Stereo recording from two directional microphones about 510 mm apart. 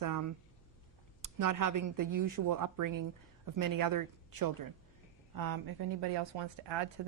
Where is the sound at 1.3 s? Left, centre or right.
Right.